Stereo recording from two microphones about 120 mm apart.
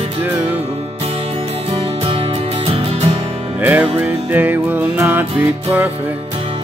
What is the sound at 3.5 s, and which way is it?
Music, 15° right (ahead or behind).